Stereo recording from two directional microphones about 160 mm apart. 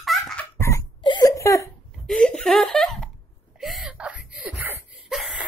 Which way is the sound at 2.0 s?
5° left (ahead or behind).